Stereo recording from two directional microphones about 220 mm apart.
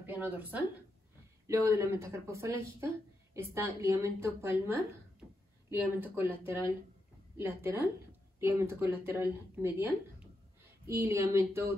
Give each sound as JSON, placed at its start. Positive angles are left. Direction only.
{"t": 0.0, "sound": "speech", "side_deg": -10}